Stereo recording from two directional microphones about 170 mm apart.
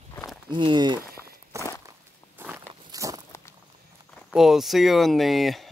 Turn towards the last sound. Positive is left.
turn(degrees=0)  # may be behind; listen again after turning